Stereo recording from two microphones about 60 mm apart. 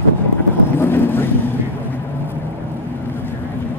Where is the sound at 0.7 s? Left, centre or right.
Left.